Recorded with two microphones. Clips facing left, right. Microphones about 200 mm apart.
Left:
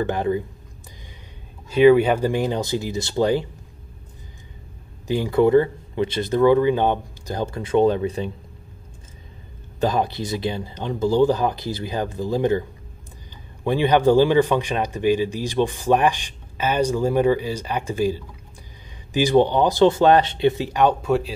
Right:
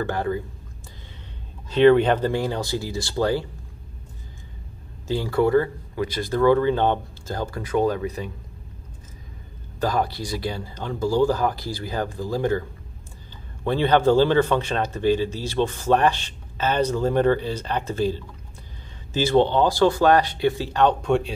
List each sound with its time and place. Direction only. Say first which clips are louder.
0.0 s speech: left 3 dB; 20° left (ahead or behind)
1.7 s speech: left 2 dB; 10° left (ahead or behind)
5.0 s speech: left 3 dB; 15° left (ahead or behind)
9.8 s speech: left 2 dB; 20° left (ahead or behind)
13.7 s speech: left 1 dB; 15° left (ahead or behind)